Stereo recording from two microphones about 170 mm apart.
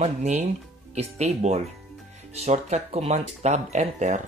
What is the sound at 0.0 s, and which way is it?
Speech, 40° right (ahead or behind).